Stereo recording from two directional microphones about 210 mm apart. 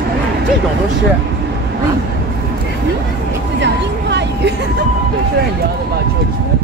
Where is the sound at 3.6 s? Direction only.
55° right (ahead or behind).